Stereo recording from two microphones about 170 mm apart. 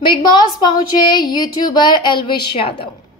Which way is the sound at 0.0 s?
25° left (ahead or behind).